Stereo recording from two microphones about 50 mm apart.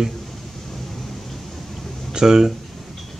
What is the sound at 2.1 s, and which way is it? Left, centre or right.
Speech, centre.